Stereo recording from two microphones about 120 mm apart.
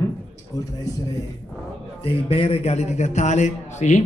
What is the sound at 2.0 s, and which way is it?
A man's voice, 50° left (ahead or behind).